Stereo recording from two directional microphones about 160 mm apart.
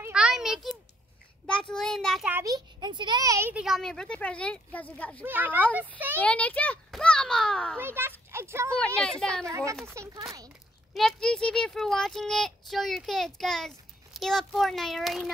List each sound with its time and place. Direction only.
0.0 s a sound: 5° right (ahead or behind)
1.5 s a child's voice: 5° left (ahead or behind)
2.2 s a child's voice: 15° right (ahead or behind)
3.5 s speech: centre (ahead or behind)
5.2 s speech: 10° right (ahead or behind)
6.1 s speech: 10° left (ahead or behind)
7.8 s speech: 15° right (ahead or behind)
8.7 s speech: 5° left (ahead or behind)
9.5 s a child's voice: 20° right (ahead or behind)
11.0 s speech: 5° left (ahead or behind)